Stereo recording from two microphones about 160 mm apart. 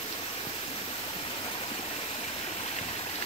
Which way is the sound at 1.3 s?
35° left (ahead or behind).